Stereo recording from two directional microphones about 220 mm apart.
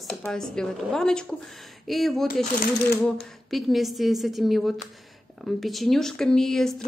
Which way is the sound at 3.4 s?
Centre (ahead or behind).